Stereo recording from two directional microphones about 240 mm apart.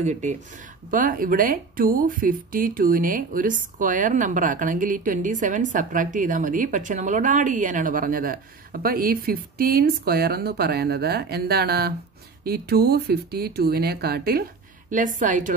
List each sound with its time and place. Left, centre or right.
0.0 s speech: right